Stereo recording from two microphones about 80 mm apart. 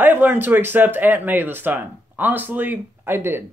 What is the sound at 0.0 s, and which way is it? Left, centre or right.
Speech, right.